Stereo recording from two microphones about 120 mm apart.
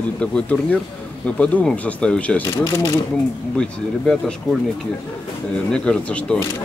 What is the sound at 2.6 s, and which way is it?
Speech, 30° left (ahead or behind).